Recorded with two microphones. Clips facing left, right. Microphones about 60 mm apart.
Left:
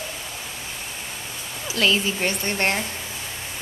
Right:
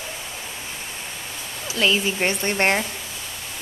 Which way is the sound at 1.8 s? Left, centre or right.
Centre.